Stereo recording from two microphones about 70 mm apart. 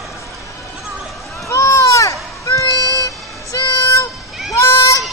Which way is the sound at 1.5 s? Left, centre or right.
Left.